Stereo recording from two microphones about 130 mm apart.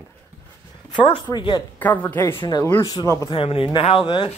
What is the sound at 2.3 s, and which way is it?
Speech, 30° left (ahead or behind).